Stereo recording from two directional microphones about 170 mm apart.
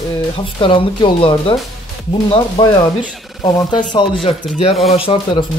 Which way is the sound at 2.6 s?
25° left (ahead or behind).